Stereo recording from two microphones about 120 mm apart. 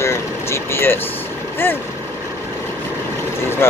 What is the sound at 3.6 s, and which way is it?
Speech, 20° left (ahead or behind).